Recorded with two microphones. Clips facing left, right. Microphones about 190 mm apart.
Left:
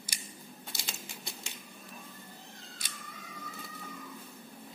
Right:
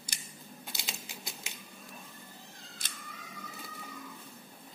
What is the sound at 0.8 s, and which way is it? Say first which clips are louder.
Typewriter: left 1 dB; centre (ahead or behind).